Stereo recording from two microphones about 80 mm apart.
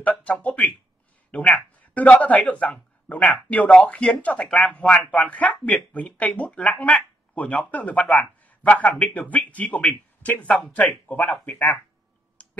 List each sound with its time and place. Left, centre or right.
0.0 s a man's voice: centre
11.1 s speech: centre
11.4 s speech: left
12.4 s finger snapping: centre